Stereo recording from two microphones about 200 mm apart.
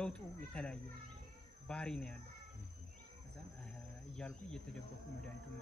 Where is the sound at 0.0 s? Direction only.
5° left (ahead or behind).